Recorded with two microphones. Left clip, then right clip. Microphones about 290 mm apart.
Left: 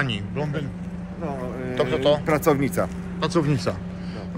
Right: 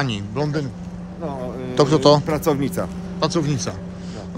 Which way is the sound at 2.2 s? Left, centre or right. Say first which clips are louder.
Even; centre.